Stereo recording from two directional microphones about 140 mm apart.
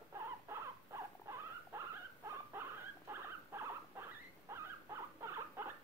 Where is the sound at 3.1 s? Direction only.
15° right (ahead or behind).